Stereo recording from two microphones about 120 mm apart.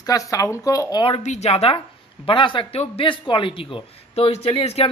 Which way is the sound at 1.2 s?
70° left (ahead or behind).